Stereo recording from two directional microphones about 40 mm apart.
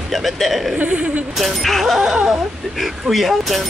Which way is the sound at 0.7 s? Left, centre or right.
Right.